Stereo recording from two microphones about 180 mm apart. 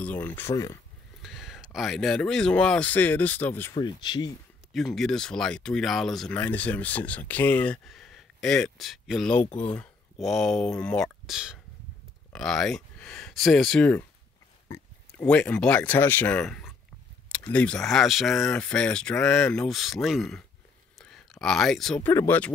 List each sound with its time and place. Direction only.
0.0 s speech: 10° left (ahead or behind)
1.2 s speech: centre (ahead or behind)
3.7 s speech: 25° left (ahead or behind)
4.7 s speech: centre (ahead or behind)